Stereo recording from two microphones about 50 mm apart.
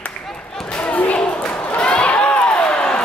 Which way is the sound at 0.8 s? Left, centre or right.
Left.